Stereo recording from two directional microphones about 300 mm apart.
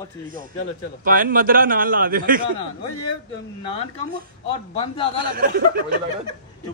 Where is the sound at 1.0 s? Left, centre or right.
Right.